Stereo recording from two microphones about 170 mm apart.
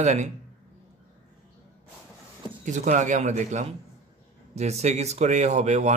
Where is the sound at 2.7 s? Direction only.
45° right (ahead or behind).